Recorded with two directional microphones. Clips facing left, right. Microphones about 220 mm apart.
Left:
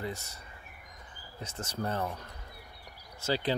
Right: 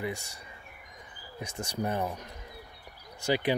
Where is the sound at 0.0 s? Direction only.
15° right (ahead or behind).